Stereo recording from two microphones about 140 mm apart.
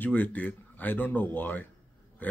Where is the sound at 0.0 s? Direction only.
10° left (ahead or behind).